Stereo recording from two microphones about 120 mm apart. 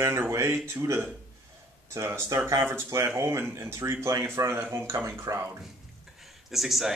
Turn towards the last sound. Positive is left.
turn(degrees=0)  # may be behind; listen again after turning